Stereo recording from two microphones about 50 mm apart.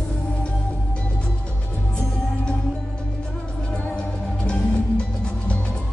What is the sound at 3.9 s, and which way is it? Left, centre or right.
Music, centre.